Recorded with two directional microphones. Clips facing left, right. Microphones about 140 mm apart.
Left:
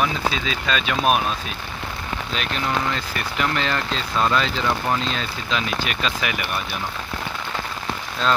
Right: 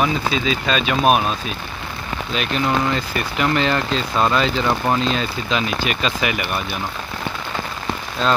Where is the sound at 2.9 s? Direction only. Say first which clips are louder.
Right 4 dB; 5° right (ahead or behind).